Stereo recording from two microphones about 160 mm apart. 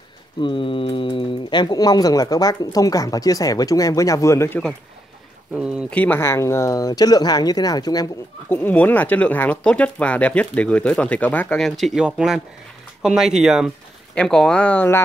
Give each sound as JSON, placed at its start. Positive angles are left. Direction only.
{"t": 0.4, "sound": "speech", "side_deg": 30}
{"t": 5.9, "sound": "speech", "side_deg": 10}
{"t": 8.6, "sound": "speech", "side_deg": 10}